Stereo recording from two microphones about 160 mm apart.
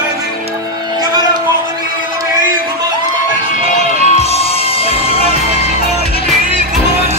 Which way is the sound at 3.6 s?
40° right (ahead or behind).